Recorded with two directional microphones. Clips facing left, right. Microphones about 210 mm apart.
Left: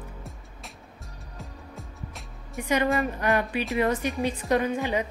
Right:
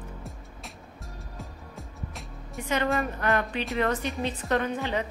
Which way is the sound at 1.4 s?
Centre (ahead or behind).